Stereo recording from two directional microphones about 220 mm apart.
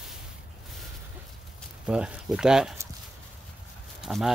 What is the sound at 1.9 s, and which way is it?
Speech, 5° right (ahead or behind).